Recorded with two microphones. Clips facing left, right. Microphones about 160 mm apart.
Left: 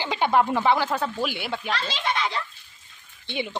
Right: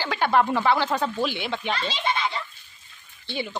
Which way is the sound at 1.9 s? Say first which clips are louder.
Even; 90° left.